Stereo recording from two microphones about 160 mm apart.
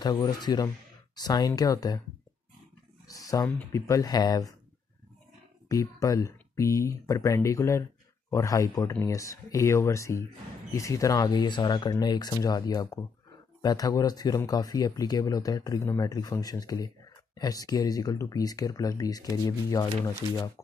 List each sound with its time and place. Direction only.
0.0 s speech: 25° left (ahead or behind)
3.1 s speech: 20° left (ahead or behind)
5.7 s speech: 20° left (ahead or behind)